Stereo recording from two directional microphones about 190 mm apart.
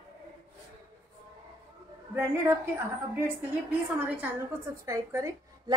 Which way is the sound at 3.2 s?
10° right (ahead or behind).